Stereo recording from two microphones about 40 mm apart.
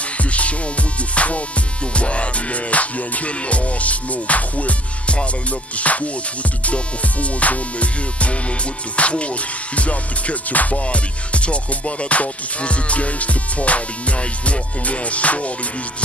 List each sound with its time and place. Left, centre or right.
0.2 s music: left